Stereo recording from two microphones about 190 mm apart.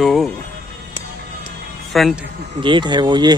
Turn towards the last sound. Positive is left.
turn(degrees=-25)  # may be behind; listen again after turning